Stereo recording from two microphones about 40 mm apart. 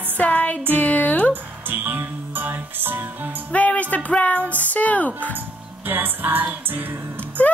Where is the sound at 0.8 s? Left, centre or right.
Left.